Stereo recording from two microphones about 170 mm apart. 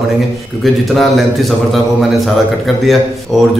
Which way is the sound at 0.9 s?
Centre (ahead or behind).